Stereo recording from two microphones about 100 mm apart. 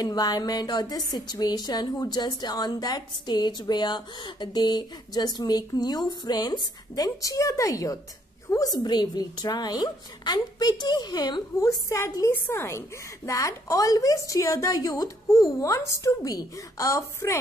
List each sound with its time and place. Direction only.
0.0 s speech: 40° left (ahead or behind)
11.9 s a woman's voice: 30° left (ahead or behind)